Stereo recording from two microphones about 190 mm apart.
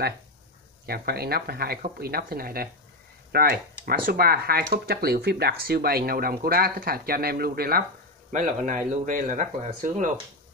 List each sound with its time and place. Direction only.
0.8 s speech: 55° right (ahead or behind)
8.3 s speech: 40° right (ahead or behind)